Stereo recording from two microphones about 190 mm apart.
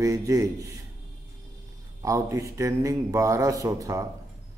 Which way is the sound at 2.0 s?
15° right (ahead or behind).